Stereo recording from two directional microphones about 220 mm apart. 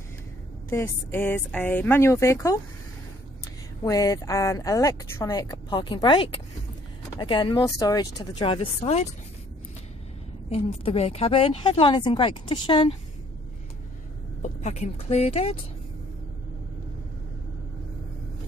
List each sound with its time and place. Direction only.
0.7 s speech: 10° left (ahead or behind)
3.8 s a woman's voice: 15° left (ahead or behind)
10.5 s a woman's voice: 25° left (ahead or behind)
14.4 s a woman's voice: 30° left (ahead or behind)